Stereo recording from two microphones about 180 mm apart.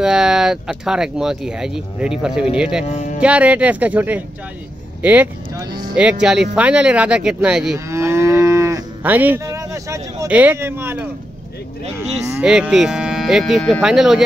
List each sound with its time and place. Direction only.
0.0 s speech: 5° right (ahead or behind)
2.8 s speech: 35° left (ahead or behind)
3.2 s speech: 5° right (ahead or behind)
7.7 s moo: 15° right (ahead or behind)
12.0 s speech: 15° right (ahead or behind)